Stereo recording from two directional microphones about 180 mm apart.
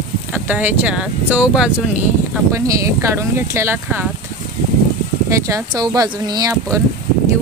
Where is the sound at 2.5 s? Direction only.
15° right (ahead or behind).